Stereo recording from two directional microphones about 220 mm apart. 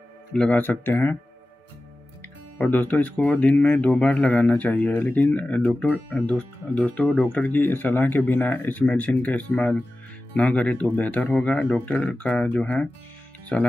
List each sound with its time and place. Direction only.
0.3 s speech: 5° left (ahead or behind)
2.6 s speech: 10° left (ahead or behind)